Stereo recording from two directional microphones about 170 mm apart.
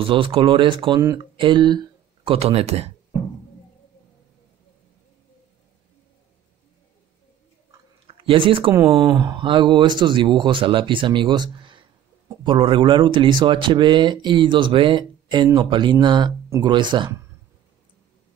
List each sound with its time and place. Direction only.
0.0 s speech: 30° right (ahead or behind)
8.1 s speech: 30° right (ahead or behind)